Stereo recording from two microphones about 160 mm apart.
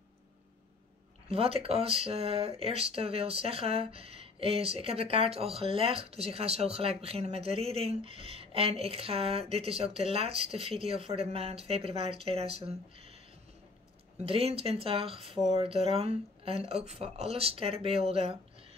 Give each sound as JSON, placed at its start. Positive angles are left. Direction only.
{"t": 1.3, "sound": "speech", "side_deg": -35}
{"t": 14.2, "sound": "speech", "side_deg": -35}